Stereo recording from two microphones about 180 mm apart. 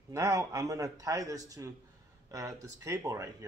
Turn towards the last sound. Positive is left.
turn(degrees=-20)  # may be behind; listen again after turning